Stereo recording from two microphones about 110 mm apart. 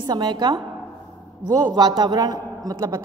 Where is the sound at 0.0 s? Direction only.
40° right (ahead or behind).